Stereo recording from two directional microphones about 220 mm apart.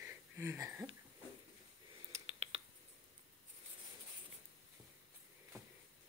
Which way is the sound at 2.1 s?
30° right (ahead or behind).